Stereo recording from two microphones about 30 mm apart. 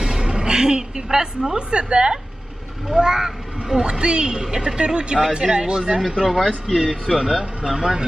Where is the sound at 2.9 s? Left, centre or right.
Centre.